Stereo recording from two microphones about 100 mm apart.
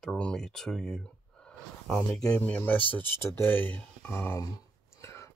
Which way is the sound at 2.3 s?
15° left (ahead or behind).